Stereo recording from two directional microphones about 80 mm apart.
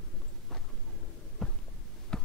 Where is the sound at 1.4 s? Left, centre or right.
Centre.